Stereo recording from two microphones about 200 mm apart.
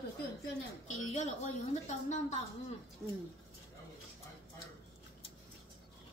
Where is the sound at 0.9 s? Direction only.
35° left (ahead or behind).